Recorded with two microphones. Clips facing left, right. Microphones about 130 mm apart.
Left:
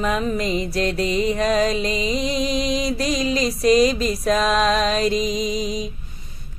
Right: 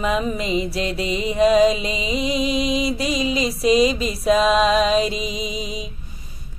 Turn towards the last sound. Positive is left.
turn(degrees=35)  # may be behind; listen again after turning